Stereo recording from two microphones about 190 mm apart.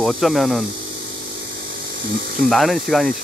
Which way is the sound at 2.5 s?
Centre (ahead or behind).